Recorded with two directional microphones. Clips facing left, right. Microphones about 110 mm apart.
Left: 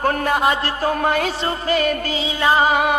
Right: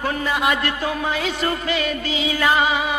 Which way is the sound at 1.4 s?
40° left (ahead or behind).